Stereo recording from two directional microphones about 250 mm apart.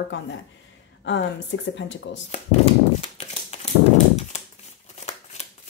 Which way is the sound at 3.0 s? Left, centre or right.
Left.